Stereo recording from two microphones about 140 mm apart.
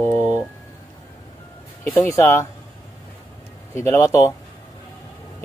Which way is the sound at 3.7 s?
20° left (ahead or behind).